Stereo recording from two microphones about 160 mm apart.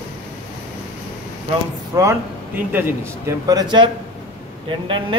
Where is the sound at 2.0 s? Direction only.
15° right (ahead or behind).